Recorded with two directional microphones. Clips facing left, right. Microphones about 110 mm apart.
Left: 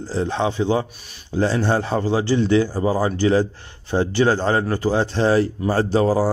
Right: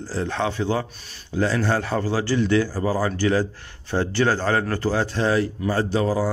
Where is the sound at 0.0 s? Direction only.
20° left (ahead or behind).